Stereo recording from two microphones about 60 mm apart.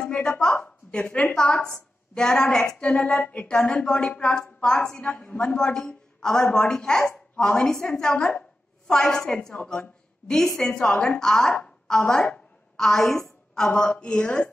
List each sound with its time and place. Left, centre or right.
0.0 s a woman's voice: centre; by 1.3 s left
1.3 s a woman's voice: centre
11.5 s bow-wow: centre
13.7 s a woman's voice: centre